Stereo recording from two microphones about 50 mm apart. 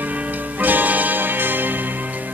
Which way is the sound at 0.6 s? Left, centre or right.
Right.